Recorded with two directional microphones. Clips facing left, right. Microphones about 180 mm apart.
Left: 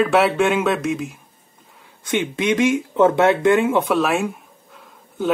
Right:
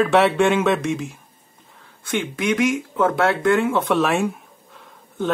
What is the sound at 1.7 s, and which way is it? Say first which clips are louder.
Speech: left 3 dB; 15° left (ahead or behind).